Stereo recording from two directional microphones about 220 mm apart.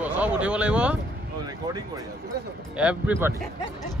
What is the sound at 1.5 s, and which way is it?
Speech, 15° right (ahead or behind).